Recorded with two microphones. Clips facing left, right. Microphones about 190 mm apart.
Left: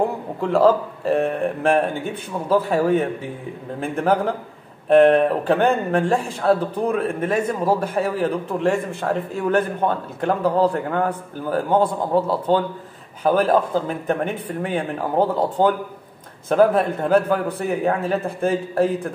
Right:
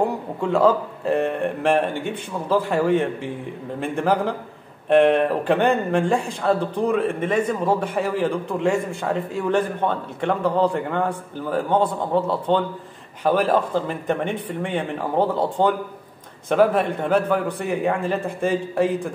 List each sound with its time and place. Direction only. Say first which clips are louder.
0.0 s speech: even; centre (ahead or behind)